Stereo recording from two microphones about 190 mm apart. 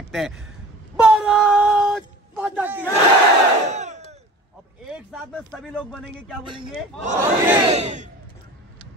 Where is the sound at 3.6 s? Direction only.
40° right (ahead or behind).